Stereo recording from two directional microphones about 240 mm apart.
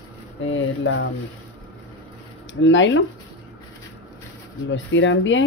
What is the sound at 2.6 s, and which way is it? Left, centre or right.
Speech, left.